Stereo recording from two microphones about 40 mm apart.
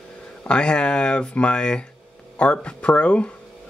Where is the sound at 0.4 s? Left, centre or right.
Left.